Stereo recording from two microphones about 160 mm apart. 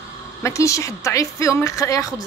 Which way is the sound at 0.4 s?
20° left (ahead or behind).